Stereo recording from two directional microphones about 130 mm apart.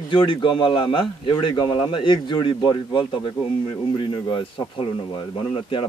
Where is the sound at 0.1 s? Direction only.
40° left (ahead or behind).